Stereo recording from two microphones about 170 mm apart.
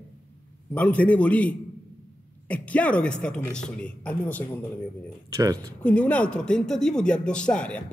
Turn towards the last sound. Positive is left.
turn(degrees=5)  # may be behind; listen again after turning